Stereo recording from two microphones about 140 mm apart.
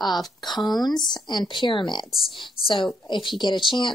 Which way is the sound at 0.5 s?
Centre (ahead or behind).